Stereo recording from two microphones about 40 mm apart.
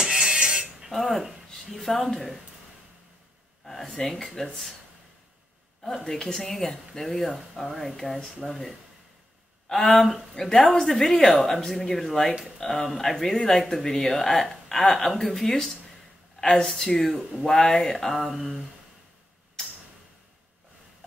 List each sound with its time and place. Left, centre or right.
0.0 s a sound: centre
0.8 s speech: centre
3.6 s speech: centre
6.0 s speech: centre
10.3 s speech: centre
16.3 s a sound: centre
16.6 s speech: centre